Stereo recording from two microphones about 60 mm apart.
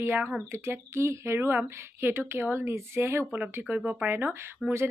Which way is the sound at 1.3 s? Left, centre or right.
Right.